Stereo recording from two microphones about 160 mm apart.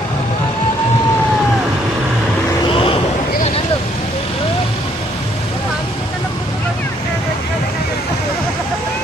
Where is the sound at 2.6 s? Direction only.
35° left (ahead or behind).